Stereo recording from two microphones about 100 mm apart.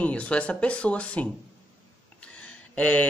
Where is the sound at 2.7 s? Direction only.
15° left (ahead or behind).